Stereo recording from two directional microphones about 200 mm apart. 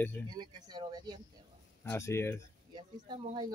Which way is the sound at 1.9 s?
15° left (ahead or behind).